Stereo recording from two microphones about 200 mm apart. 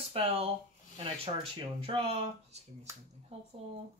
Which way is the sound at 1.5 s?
30° right (ahead or behind).